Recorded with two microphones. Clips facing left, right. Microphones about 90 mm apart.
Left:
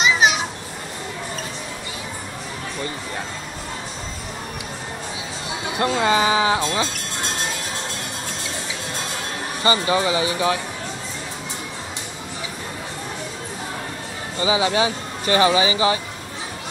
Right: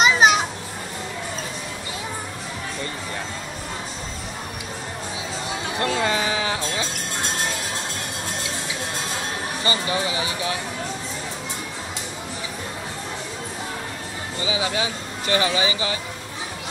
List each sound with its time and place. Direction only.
0.0 s children playing: 40° right (ahead or behind)
5.8 s speech: 15° left (ahead or behind)
9.7 s speech: 35° left (ahead or behind)
14.4 s speech: 35° left (ahead or behind)